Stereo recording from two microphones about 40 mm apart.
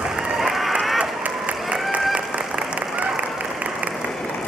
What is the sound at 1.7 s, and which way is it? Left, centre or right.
Applause, right.